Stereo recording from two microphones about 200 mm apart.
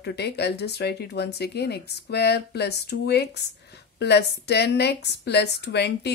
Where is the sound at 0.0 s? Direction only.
55° left (ahead or behind).